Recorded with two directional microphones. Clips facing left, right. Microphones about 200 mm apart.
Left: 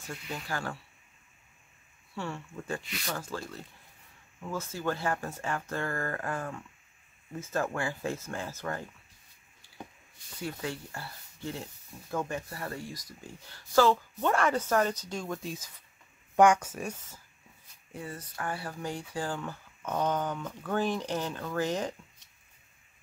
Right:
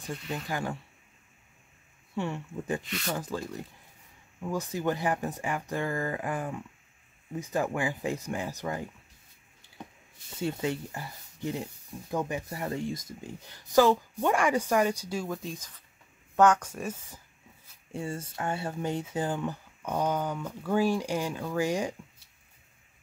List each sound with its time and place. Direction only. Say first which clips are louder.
0.5 s speech: right 3 dB; 15° right (ahead or behind)
2.1 s speech: right 5 dB; 20° right (ahead or behind)
10.4 s speech: right 6 dB; 20° right (ahead or behind); by 16.9 s 5° left (ahead or behind)
17.9 s speech: right 5 dB; 25° right (ahead or behind); by 22.3 s 10° right (ahead or behind)